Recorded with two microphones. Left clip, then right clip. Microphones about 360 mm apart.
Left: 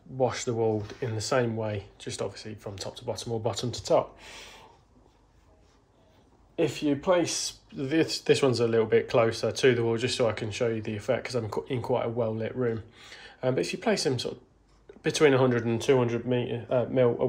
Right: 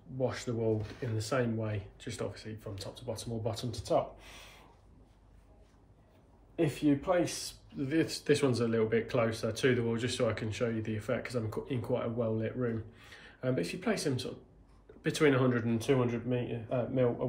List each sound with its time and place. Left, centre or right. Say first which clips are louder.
0.2 s speech: left 7 dB; centre
6.5 s speech: left 3 dB; left